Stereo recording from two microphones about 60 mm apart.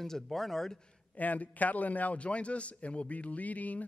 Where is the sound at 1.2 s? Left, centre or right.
Left.